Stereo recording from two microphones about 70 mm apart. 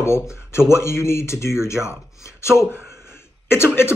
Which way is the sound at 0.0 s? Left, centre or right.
Left.